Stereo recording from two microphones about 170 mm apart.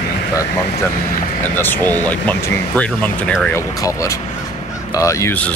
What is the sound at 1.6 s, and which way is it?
Speech, 10° left (ahead or behind).